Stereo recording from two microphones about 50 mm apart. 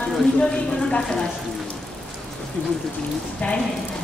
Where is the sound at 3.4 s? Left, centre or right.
Left.